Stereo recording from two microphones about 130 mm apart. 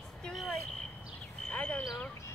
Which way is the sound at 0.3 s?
Centre (ahead or behind).